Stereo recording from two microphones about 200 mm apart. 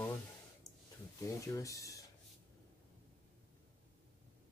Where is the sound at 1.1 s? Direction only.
15° left (ahead or behind).